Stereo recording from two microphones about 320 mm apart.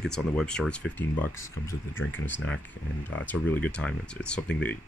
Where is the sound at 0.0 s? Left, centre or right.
Centre.